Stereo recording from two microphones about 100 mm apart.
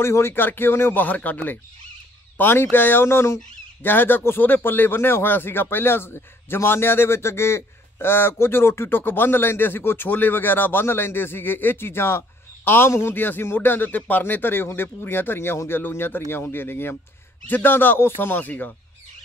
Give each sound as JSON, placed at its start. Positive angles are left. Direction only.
{"t": 0.0, "sound": "speech", "side_deg": 25}